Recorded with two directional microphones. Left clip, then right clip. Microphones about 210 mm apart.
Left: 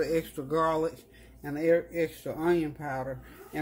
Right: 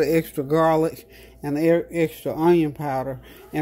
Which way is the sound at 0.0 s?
40° right (ahead or behind).